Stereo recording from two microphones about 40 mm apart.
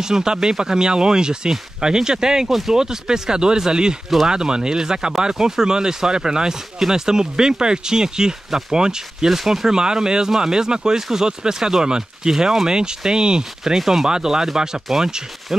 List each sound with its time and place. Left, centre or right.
0.0 s speech: centre